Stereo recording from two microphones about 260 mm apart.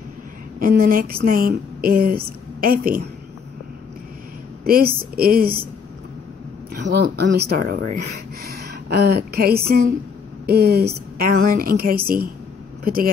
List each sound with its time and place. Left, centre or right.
0.6 s speech: right
4.6 s speech: right
6.7 s a woman's voice: right